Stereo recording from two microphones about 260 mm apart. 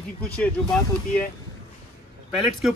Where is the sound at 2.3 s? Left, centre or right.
Centre.